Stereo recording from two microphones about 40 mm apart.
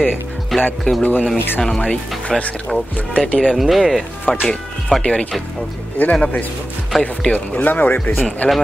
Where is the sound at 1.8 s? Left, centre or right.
Left.